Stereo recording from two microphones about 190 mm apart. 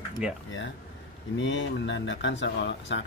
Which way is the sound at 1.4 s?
75° left (ahead or behind).